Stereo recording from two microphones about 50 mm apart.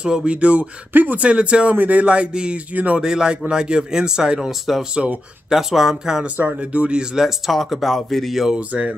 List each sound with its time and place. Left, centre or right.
0.0 s speech: centre
0.9 s speech: right
1.2 s speech: right
3.0 s a man's voice: centre
4.9 s speech: right
5.5 s a man's voice: centre
6.3 s speech: right
7.2 s speech: centre
8.5 s speech: right